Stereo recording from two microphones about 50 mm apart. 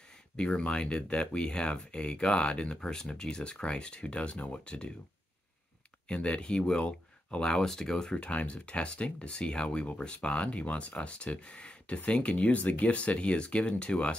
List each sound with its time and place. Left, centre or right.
0.4 s speech: centre
6.0 s speech: centre